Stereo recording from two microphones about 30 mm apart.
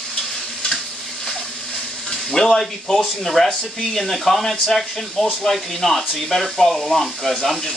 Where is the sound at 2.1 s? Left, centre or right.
Centre.